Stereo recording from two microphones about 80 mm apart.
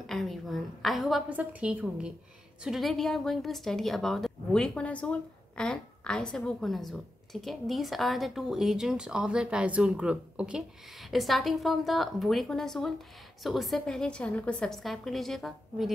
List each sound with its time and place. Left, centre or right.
0.0 s a sound: centre
1.3 s a woman's voice: centre
2.6 s a woman's voice: centre
11.0 s a woman's voice: centre
14.7 s a woman's voice: centre